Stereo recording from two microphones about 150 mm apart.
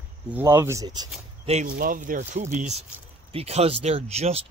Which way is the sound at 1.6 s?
70° right (ahead or behind).